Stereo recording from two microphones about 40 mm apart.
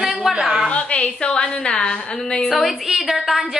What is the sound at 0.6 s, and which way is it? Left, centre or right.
A woman's voice, left.